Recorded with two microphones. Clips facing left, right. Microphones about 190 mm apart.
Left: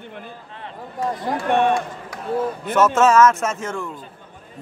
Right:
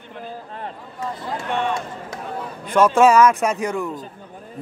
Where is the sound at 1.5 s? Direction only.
55° left (ahead or behind).